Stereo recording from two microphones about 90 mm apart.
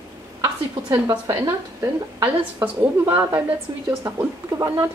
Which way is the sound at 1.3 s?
30° right (ahead or behind).